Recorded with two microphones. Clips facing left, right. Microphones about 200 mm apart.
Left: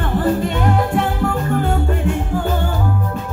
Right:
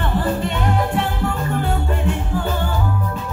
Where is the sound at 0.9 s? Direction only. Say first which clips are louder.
Left 3 dB; 50° left (ahead or behind).